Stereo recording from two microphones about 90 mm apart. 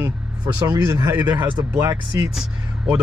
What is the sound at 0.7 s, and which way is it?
Speech, 30° right (ahead or behind).